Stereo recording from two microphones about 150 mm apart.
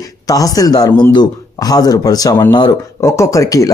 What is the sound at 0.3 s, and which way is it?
Speech, 25° left (ahead or behind).